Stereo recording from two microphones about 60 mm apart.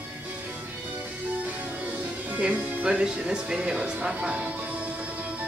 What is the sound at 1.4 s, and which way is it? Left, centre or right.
Music, right.